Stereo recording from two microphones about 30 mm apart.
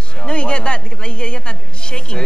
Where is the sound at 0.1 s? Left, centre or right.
Left.